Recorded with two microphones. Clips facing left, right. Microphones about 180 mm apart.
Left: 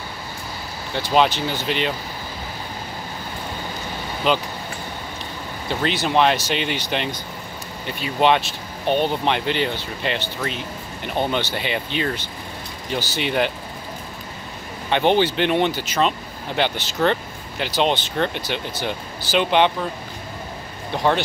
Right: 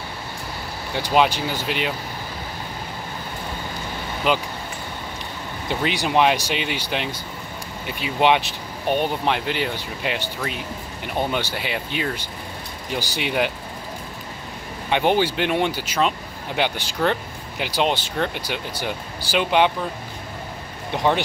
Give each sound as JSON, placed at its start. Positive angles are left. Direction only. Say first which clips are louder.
{"t": 0.9, "sound": "speech", "louder": "left 1 dB", "side_deg": -10}
{"t": 4.2, "sound": "speech", "louder": "left 1 dB", "side_deg": -10}
{"t": 5.7, "sound": "speech", "louder": "left 1 dB", "side_deg": -10}
{"t": 14.9, "sound": "speech", "louder": "left 2 dB", "side_deg": -5}
{"t": 20.9, "sound": "speech", "louder": "left 1 dB", "side_deg": -15}